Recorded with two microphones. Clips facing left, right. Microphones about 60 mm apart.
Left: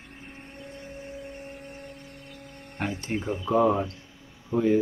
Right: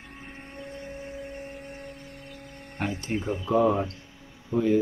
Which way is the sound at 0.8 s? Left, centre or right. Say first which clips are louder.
Left 1 dB; right.